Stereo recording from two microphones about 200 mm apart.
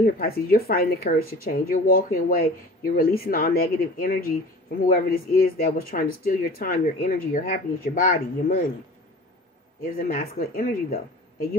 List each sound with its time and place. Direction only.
0.0 s speech: 50° left (ahead or behind)
9.8 s speech: 45° left (ahead or behind)